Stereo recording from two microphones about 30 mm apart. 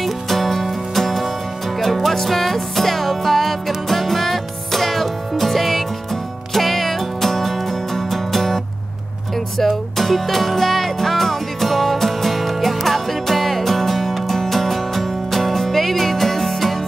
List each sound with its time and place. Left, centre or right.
0.0 s music: centre
9.6 s music: centre